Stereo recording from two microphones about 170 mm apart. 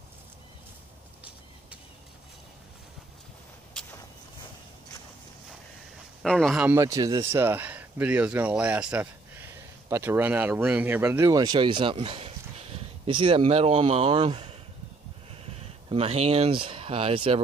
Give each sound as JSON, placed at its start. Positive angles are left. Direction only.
{"t": 6.2, "sound": "speech", "side_deg": 0}
{"t": 6.7, "sound": "speech", "side_deg": -20}